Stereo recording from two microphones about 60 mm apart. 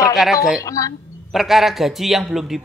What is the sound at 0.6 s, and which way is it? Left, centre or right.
Speech, left.